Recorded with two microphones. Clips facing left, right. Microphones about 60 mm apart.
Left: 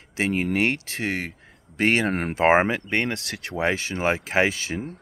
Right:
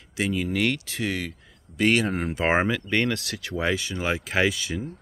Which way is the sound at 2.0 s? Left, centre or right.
Left.